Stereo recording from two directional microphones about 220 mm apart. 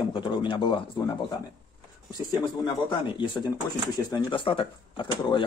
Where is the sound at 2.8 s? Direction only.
20° left (ahead or behind).